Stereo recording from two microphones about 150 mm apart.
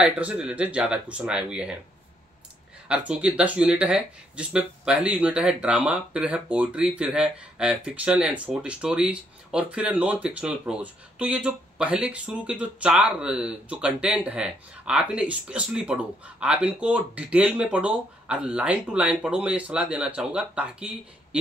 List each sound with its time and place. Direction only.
0.0 s speech: 10° right (ahead or behind)
2.9 s speech: 10° right (ahead or behind)